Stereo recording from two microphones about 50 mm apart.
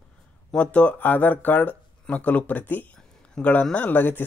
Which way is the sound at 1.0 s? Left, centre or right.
Left.